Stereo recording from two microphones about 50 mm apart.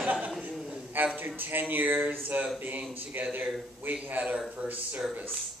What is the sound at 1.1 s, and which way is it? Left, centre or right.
A man's voice, right.